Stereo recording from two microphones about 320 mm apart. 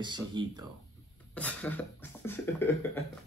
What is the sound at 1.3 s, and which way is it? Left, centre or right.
Beatboxing, centre.